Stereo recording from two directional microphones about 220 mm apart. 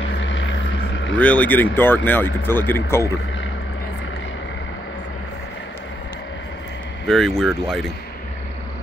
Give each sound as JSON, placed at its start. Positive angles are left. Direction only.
{"t": 0.2, "sound": "vehicle", "side_deg": 60}
{"t": 1.2, "sound": "speech", "side_deg": 5}
{"t": 7.1, "sound": "speech", "side_deg": 0}